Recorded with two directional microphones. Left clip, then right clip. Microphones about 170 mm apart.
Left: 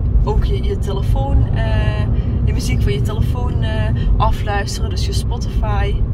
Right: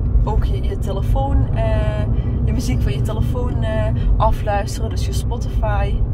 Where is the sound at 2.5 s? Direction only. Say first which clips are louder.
Left 3 dB; 90° right.